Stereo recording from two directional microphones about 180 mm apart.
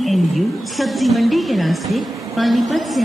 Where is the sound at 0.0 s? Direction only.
Centre (ahead or behind).